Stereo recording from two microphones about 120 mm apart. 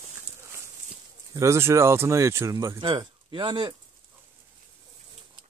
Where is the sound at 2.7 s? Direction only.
40° right (ahead or behind).